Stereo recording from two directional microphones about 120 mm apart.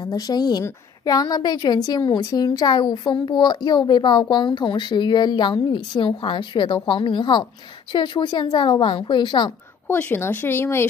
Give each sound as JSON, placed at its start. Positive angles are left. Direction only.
{"t": 0.0, "sound": "a woman's voice", "side_deg": 35}
{"t": 9.8, "sound": "speech", "side_deg": 15}